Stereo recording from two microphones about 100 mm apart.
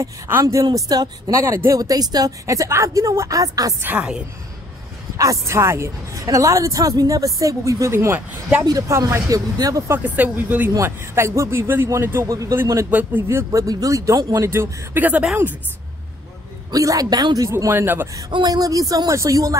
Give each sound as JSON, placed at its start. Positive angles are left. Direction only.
{"t": 0.0, "sound": "a man's voice", "side_deg": -30}
{"t": 0.7, "sound": "a man's voice", "side_deg": -40}
{"t": 1.3, "sound": "a man's voice", "side_deg": -30}
{"t": 3.8, "sound": "speech", "side_deg": -15}
{"t": 5.1, "sound": "a man's voice", "side_deg": -30}
{"t": 9.8, "sound": "speech", "side_deg": -15}
{"t": 10.7, "sound": "a man's voice", "side_deg": -30}
{"t": 12.9, "sound": "speech", "side_deg": -20}
{"t": 16.7, "sound": "a man's voice", "side_deg": -35}
{"t": 17.5, "sound": "speech", "side_deg": -25}
{"t": 18.5, "sound": "a man's voice", "side_deg": -35}